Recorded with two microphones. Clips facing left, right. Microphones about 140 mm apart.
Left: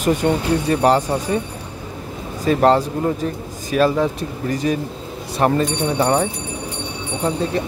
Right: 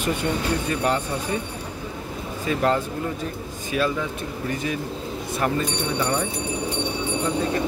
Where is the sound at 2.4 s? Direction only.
40° left (ahead or behind).